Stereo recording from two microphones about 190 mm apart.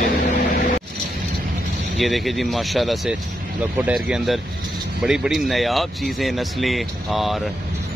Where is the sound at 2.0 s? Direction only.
Centre (ahead or behind).